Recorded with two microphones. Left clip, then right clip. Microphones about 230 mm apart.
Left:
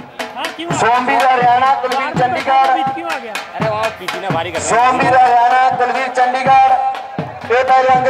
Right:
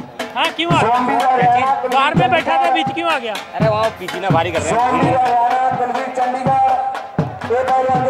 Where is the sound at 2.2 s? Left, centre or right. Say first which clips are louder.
Left 1 dB; centre.